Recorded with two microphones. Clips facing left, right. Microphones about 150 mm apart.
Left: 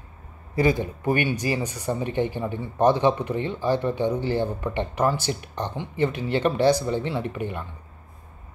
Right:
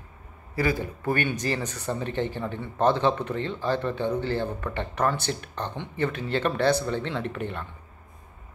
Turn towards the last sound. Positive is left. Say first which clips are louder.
# left 2 dB
turn(degrees=10)  # may be behind; listen again after turning